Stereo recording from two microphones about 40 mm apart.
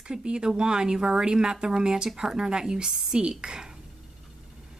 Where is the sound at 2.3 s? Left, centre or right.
Centre.